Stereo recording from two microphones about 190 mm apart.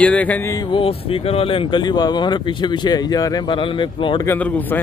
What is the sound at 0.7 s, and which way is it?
Speech, 30° left (ahead or behind).